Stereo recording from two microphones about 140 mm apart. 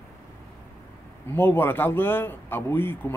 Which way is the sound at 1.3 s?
15° left (ahead or behind).